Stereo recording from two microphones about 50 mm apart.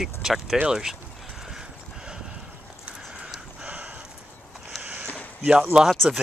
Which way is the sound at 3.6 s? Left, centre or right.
Right.